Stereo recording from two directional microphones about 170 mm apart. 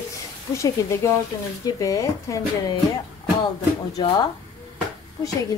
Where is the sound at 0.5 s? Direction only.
20° left (ahead or behind).